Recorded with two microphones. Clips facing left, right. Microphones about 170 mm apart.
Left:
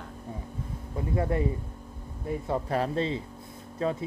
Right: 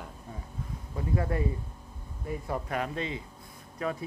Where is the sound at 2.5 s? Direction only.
30° left (ahead or behind).